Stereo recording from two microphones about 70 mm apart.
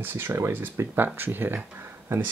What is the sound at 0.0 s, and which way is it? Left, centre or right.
Speech, right.